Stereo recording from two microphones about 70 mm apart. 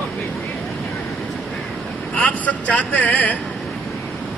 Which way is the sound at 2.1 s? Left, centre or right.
Left.